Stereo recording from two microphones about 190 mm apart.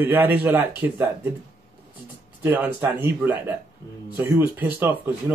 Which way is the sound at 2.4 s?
10° right (ahead or behind).